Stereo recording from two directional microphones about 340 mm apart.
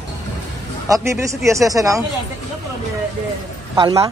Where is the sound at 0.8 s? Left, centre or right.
Centre.